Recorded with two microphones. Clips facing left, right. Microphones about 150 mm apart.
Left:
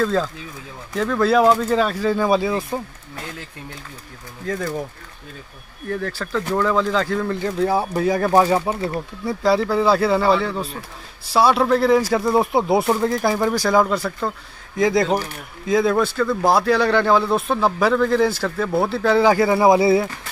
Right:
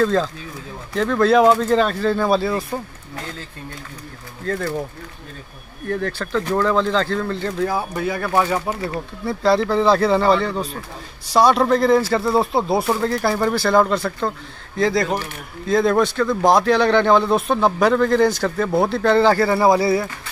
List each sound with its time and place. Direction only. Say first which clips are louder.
0.0 s a man's voice: right 2 dB; 5° left (ahead or behind)
4.5 s speech: right 1 dB; 10° left (ahead or behind)
5.9 s a man's voice: right 2 dB; 5° left (ahead or behind)
7.6 s speech: left 4 dB; 30° left (ahead or behind)
9.2 s a man's voice: right 1 dB; 10° left (ahead or behind)